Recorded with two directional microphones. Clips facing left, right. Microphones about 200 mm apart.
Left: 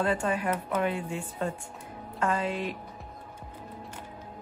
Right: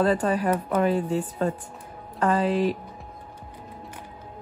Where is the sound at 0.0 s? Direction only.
40° right (ahead or behind).